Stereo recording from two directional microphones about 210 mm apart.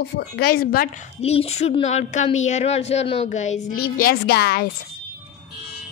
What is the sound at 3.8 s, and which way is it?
Speech, 45° left (ahead or behind).